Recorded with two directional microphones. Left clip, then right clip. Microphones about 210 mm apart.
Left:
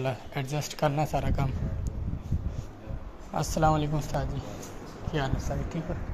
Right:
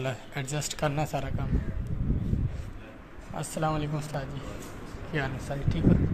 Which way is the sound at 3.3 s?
10° left (ahead or behind).